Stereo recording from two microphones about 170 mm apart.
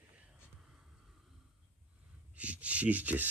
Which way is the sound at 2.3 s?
10° right (ahead or behind).